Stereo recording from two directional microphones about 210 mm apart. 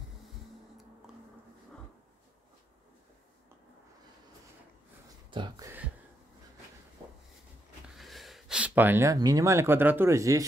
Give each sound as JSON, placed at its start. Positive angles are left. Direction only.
{"t": 5.3, "sound": "speech", "side_deg": -20}
{"t": 7.9, "sound": "speech", "side_deg": 0}